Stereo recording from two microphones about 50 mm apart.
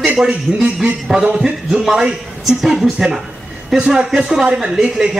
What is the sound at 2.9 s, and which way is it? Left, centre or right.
Speech, centre.